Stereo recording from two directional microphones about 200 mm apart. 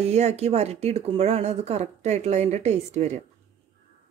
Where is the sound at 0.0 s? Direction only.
35° right (ahead or behind).